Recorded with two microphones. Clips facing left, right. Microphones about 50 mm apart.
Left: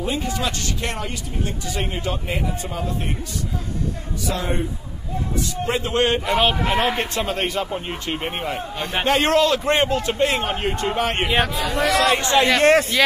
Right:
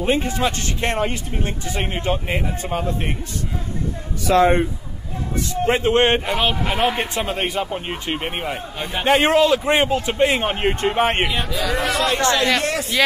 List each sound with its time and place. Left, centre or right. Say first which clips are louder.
0.0 s a man's voice: right 4 dB; right
4.3 s speech: right 10 dB; right
5.5 s a man's voice: right 8 dB; right
6.3 s a man's voice: left 2 dB; centre; by 11.2 s right
11.5 s a man's voice: right 2 dB; right
12.1 s speech: left 1 dB; left